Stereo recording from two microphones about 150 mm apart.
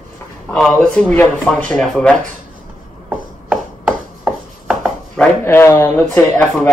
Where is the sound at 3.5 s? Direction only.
10° right (ahead or behind).